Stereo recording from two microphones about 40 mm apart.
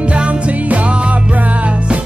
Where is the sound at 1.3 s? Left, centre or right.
Right.